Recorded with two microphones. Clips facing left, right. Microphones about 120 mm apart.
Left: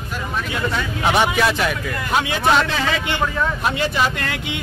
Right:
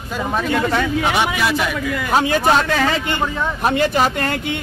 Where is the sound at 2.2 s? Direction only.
45° right (ahead or behind).